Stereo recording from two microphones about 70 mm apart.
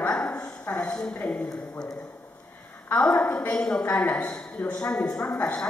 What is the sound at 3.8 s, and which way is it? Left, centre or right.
A woman's voice, left.